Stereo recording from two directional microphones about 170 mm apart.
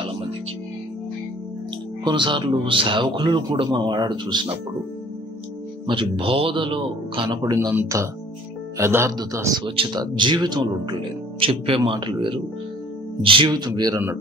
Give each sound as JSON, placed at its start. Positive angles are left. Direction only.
{"t": 2.0, "sound": "speech", "side_deg": -30}
{"t": 5.9, "sound": "speech", "side_deg": -30}